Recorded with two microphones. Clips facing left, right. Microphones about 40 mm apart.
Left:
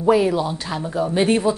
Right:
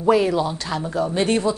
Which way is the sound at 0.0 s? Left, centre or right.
Centre.